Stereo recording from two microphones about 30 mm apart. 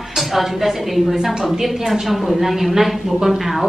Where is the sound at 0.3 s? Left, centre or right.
Centre.